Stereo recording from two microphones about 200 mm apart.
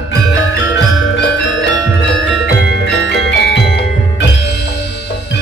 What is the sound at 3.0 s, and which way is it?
Music, 60° left (ahead or behind).